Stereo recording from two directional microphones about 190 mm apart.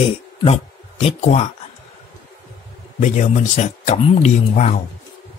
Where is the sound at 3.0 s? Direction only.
40° left (ahead or behind).